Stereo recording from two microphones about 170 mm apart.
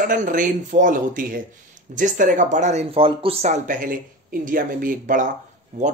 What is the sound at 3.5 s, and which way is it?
Speech, 50° right (ahead or behind).